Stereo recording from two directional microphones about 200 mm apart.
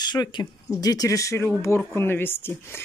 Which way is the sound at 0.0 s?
20° left (ahead or behind).